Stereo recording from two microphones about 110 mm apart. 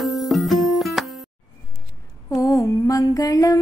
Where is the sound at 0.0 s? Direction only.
Centre (ahead or behind).